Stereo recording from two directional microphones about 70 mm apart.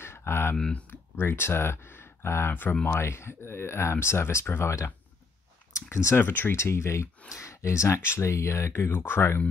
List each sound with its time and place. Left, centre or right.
0.0 s a sound: left
0.6 s speech: centre
1.2 s speech: left